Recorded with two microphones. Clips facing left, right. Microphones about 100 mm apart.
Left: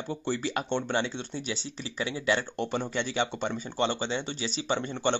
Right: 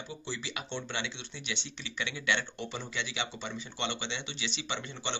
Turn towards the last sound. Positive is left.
turn(degrees=40)  # may be behind; listen again after turning